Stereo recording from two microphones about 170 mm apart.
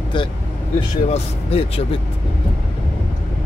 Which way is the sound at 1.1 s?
35° left (ahead or behind).